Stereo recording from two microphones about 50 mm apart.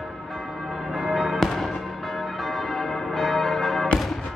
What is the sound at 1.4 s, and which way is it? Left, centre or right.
Music, centre.